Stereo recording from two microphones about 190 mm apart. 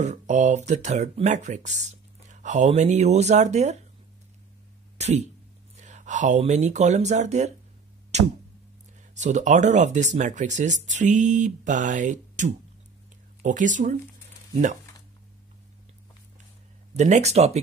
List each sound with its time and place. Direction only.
0.0 s speech: 40° right (ahead or behind)
4.9 s a sound: 35° right (ahead or behind)
5.8 s speech: 40° right (ahead or behind)
8.1 s music: 35° right (ahead or behind)
9.1 s speech: 40° right (ahead or behind)
16.9 s speech: 35° right (ahead or behind)